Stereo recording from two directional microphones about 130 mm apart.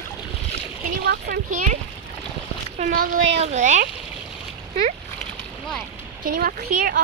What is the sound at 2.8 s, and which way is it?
Speech, 90° right.